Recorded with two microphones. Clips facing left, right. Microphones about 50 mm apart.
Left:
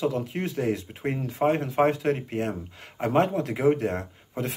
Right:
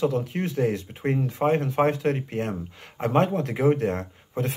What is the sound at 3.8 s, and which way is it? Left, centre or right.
Speech, centre.